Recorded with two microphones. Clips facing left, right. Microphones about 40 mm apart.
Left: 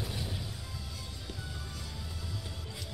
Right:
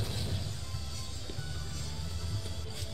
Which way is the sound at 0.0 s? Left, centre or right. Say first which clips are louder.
Even; centre.